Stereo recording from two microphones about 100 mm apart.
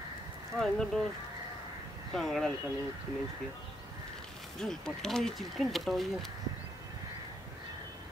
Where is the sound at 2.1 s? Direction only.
5° left (ahead or behind).